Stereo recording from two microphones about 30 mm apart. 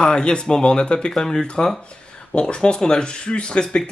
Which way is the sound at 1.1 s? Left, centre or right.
Left.